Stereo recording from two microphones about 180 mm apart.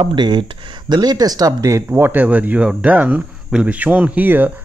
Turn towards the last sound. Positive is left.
turn(degrees=-10)  # may be behind; listen again after turning